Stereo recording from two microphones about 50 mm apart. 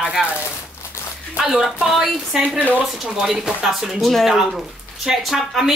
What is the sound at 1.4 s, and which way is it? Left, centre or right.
Speech, centre.